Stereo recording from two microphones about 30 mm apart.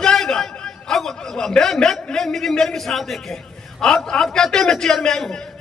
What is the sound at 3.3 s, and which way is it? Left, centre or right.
A man's voice, centre.